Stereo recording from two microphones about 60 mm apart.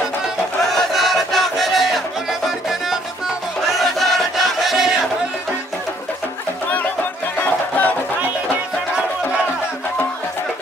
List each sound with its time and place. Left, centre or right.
0.6 s crowd: centre
2.4 s music: centre
7.3 s music: left